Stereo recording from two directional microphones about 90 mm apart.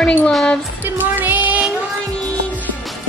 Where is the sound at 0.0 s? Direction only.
15° left (ahead or behind).